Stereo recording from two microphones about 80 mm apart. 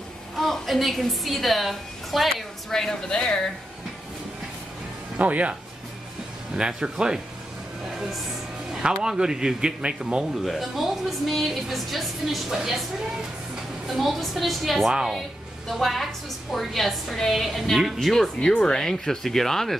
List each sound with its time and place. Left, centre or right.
0.4 s a woman's voice: centre
5.1 s speech: centre
9.0 s a man's voice: centre
13.8 s a man's voice: centre